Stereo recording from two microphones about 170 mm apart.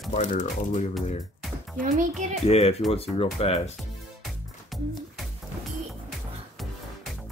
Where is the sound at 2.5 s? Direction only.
35° left (ahead or behind).